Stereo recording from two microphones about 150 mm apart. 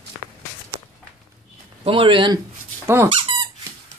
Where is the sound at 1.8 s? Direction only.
35° right (ahead or behind).